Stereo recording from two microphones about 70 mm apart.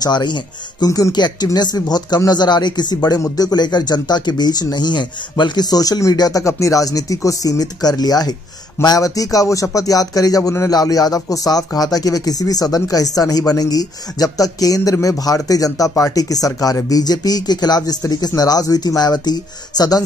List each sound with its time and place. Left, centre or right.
0.0 s speech: left
3.3 s speech: left
6.1 s speech: left
6.4 s speech: left
8.8 s speech: left